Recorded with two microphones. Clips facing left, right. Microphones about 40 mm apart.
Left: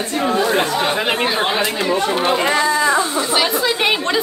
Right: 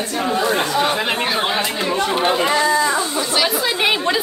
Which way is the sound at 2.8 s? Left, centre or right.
Left.